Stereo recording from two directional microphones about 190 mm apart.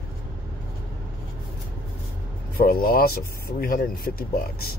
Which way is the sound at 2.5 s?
50° left (ahead or behind).